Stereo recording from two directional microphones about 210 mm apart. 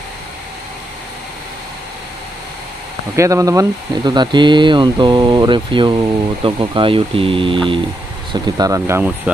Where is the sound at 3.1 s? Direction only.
15° right (ahead or behind).